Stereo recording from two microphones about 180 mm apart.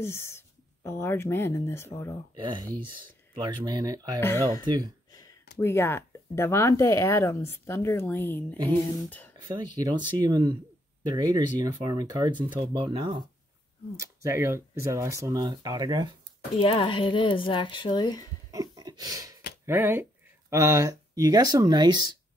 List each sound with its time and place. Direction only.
0.0 s speech: 15° left (ahead or behind)
2.3 s speech: 25° right (ahead or behind)
5.6 s speech: 15° left (ahead or behind)
9.8 s speech: 20° right (ahead or behind)
13.9 s speech: 15° right (ahead or behind)
16.5 s speech: 30° left (ahead or behind)
18.5 s a sound: 20° right (ahead or behind)
19.6 s speech: 10° right (ahead or behind)